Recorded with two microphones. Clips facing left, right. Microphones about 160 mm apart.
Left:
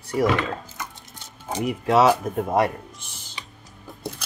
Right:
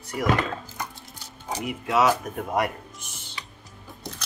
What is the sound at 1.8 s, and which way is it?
Speech, 30° left (ahead or behind).